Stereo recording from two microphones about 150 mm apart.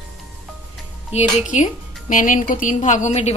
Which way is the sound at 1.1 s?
45° left (ahead or behind).